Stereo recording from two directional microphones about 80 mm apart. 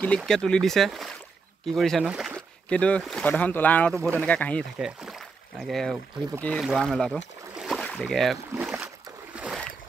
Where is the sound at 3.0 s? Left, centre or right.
Centre.